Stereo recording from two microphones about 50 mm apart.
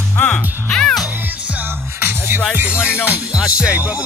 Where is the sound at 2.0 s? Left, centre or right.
Right.